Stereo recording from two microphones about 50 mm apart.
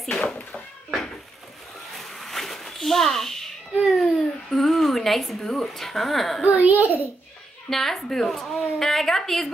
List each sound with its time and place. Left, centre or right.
0.0 s cat: centre
2.0 s a sound: centre
3.8 s baby cry: centre
6.4 s a child's voice: right
7.7 s a woman's voice: centre